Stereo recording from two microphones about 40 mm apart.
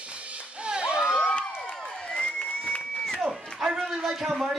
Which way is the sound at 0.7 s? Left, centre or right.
Right.